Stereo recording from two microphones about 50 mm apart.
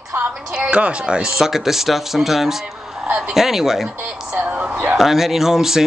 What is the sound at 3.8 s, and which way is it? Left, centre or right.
Speech, right.